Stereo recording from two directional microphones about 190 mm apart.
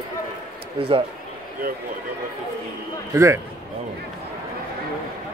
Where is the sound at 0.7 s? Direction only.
30° right (ahead or behind).